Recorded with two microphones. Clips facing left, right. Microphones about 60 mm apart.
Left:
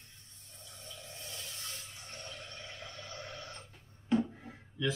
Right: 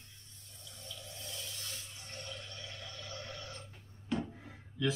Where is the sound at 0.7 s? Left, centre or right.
Left.